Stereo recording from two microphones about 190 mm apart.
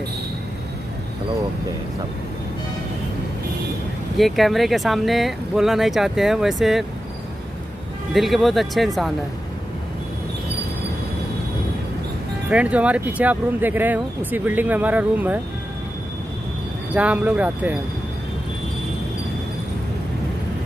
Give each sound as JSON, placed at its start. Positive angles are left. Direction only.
{"t": 4.2, "sound": "speech", "side_deg": 0}
{"t": 8.1, "sound": "speech", "side_deg": 0}
{"t": 12.4, "sound": "speech", "side_deg": -5}
{"t": 16.9, "sound": "speech", "side_deg": -5}